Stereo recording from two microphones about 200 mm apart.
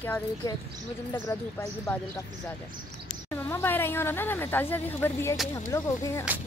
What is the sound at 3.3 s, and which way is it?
Speech, 10° left (ahead or behind).